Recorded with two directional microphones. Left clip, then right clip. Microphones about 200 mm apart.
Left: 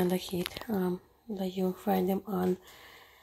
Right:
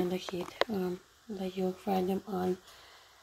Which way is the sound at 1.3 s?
15° left (ahead or behind).